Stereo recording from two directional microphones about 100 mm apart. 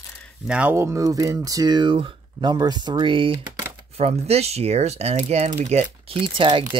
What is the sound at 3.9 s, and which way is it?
Speech, 90° right.